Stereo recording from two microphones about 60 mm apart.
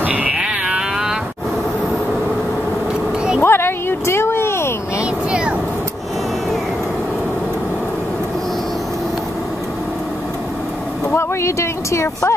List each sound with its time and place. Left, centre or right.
0.0 s sheep: right
3.3 s vehicle: left
11.1 s a sound: left